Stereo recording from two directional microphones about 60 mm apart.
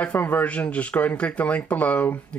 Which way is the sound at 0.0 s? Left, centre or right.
Left.